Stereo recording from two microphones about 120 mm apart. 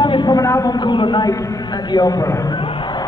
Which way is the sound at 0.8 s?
40° left (ahead or behind).